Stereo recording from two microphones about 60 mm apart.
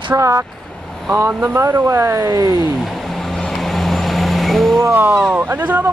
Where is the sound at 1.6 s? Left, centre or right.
Right.